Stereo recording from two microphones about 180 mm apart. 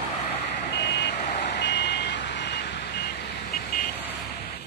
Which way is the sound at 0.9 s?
65° left (ahead or behind).